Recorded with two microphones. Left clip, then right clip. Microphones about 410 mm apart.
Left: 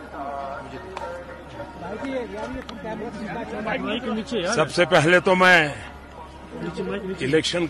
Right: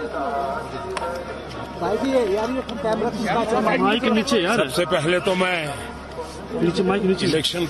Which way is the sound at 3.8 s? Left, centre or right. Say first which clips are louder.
Right 9 dB; right.